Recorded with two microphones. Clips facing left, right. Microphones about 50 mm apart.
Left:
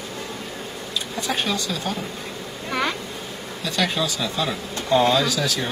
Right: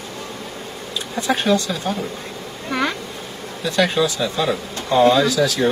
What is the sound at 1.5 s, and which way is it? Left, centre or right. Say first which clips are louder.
Speech: right 8 dB; centre.